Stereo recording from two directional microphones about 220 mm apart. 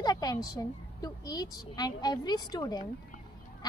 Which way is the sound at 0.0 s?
15° left (ahead or behind).